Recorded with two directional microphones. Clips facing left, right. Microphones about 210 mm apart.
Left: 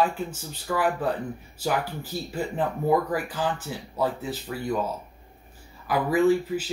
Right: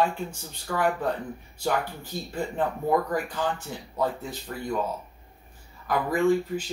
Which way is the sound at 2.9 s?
5° left (ahead or behind).